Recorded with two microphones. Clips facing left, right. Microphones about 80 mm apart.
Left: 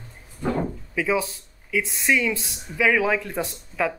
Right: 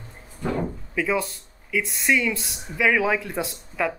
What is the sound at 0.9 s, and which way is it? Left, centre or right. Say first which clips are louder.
Speech: left 1 dB; centre.